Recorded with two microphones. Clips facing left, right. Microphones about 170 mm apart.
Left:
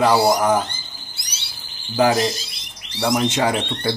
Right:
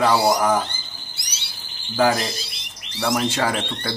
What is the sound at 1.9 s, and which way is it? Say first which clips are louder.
Speech: left 2 dB; 15° left (ahead or behind).